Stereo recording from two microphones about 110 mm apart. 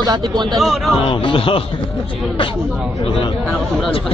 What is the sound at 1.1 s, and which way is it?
Speech, 50° left (ahead or behind).